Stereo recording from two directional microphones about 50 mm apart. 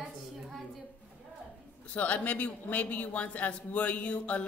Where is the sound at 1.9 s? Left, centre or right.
Left.